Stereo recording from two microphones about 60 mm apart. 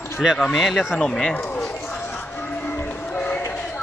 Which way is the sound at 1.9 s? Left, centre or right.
Left.